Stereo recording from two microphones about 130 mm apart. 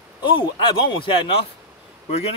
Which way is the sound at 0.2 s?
35° left (ahead or behind).